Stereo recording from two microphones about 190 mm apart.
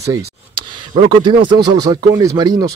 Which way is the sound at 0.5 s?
25° right (ahead or behind).